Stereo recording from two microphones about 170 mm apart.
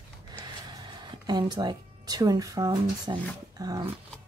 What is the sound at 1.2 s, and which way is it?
Speech, 25° right (ahead or behind).